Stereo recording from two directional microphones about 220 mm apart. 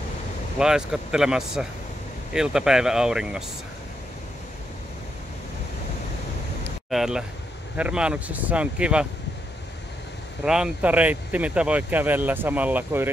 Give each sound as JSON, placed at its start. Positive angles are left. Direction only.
{"t": 0.6, "sound": "speech", "side_deg": -5}
{"t": 6.9, "sound": "speech", "side_deg": 0}
{"t": 10.4, "sound": "speech", "side_deg": -5}